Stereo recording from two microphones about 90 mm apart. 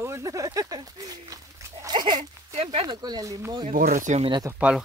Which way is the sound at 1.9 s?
60° right (ahead or behind).